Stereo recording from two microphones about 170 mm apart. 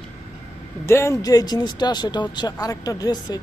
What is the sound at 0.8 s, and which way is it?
Speech, 15° left (ahead or behind).